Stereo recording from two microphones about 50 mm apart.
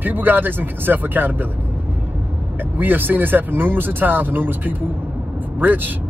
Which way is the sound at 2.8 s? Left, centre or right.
Right.